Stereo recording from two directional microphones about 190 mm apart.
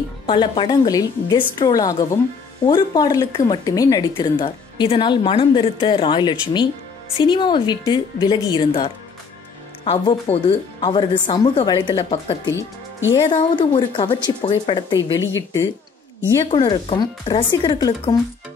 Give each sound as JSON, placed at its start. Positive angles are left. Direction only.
{"t": 0.3, "sound": "a woman's voice", "side_deg": 25}
{"t": 12.4, "sound": "speech", "side_deg": 80}
{"t": 13.3, "sound": "a woman's voice", "side_deg": 25}